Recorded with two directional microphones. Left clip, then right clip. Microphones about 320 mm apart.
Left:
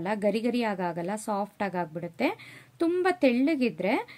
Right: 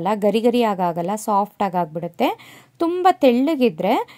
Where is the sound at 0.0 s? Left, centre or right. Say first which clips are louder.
Right 10 dB; right.